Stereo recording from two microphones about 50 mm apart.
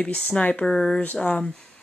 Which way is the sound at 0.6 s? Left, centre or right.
Centre.